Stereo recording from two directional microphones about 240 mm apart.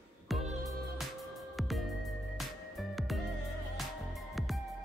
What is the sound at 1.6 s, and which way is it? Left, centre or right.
Music, centre.